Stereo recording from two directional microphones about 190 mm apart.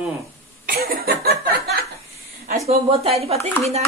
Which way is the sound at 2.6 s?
30° right (ahead or behind).